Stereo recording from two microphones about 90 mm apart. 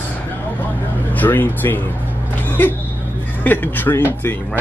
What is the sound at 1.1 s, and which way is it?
Speech, 20° left (ahead or behind).